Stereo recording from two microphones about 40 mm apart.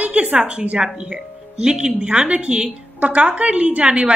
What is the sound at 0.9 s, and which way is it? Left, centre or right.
A woman's voice, centre.